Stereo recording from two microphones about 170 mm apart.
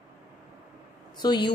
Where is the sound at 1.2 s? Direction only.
25° left (ahead or behind).